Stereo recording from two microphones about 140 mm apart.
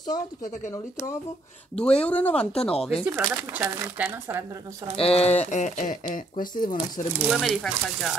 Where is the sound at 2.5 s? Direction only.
45° left (ahead or behind).